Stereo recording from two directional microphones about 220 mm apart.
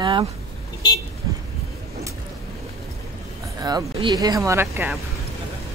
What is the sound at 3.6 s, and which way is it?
Speech, 15° right (ahead or behind).